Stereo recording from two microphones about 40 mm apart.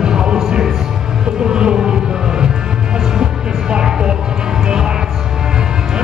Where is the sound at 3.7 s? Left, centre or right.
Right.